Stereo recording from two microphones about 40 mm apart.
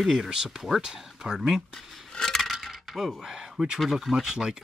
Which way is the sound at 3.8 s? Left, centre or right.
Centre.